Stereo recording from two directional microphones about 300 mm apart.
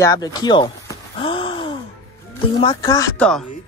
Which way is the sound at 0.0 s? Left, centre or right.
Centre.